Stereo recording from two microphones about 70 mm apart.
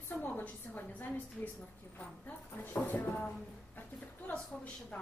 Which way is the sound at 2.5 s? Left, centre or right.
Left.